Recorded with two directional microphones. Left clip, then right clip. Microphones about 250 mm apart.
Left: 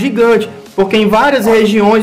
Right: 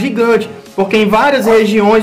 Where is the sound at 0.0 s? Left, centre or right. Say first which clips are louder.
Left 2 dB; centre.